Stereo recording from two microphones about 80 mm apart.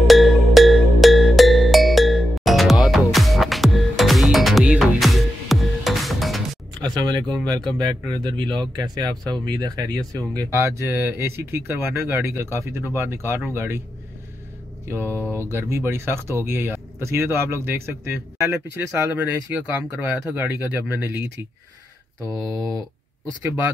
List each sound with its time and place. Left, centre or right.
0.0 s music: centre
6.9 s speech: right
10.5 s speech: right
15.4 s speech: right
19.1 s speech: centre
22.3 s speech: centre
23.4 s speech: right